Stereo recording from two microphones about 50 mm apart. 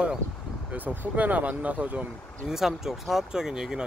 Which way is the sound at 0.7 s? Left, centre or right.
Right.